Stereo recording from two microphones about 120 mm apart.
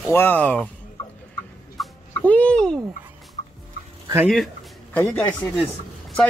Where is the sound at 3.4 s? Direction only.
75° left (ahead or behind).